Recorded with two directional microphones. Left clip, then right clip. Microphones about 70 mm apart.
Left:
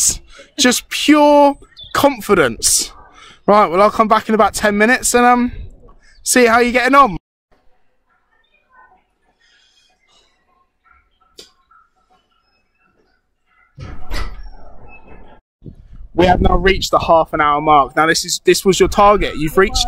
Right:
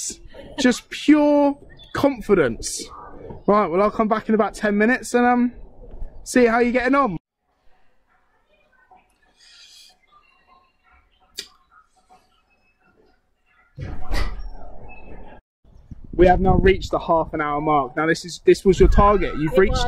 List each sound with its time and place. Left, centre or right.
0.1 s speech: left
11.7 s a sound: centre
13.9 s dog: centre
16.2 s speech: left